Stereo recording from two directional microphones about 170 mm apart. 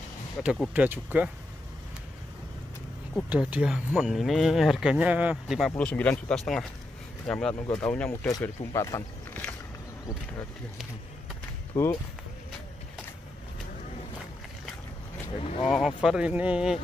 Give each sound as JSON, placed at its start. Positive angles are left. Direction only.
{"t": 0.4, "sound": "speech", "side_deg": -5}
{"t": 3.3, "sound": "speech", "side_deg": -5}
{"t": 5.7, "sound": "speech", "side_deg": 10}
{"t": 8.3, "sound": "speech", "side_deg": 20}
{"t": 11.7, "sound": "speech", "side_deg": 20}
{"t": 15.3, "sound": "speech", "side_deg": 35}
{"t": 15.6, "sound": "speech", "side_deg": 0}